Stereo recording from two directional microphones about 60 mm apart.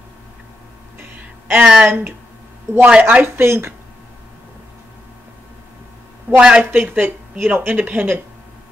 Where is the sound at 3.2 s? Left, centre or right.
Right.